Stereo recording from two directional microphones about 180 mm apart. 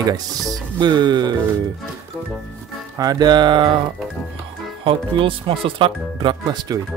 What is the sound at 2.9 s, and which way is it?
Speech, 20° right (ahead or behind).